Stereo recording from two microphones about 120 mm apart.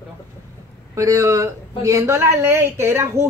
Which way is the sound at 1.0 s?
25° right (ahead or behind).